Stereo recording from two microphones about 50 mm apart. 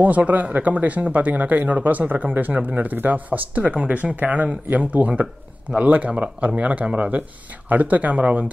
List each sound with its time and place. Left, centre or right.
0.0 s speech: right
5.2 s speech: centre
5.9 s speech: right